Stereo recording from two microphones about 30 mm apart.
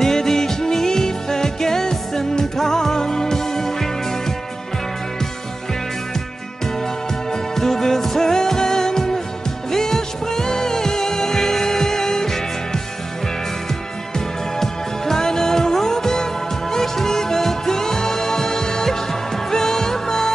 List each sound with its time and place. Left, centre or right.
0.0 s music: centre
7.5 s music: centre
14.1 s music: centre